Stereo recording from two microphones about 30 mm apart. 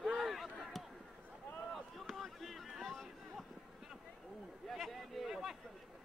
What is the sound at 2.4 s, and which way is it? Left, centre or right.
Boat, centre.